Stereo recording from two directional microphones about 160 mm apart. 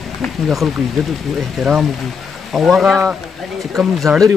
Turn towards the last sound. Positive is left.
turn(degrees=0)  # may be behind; listen again after turning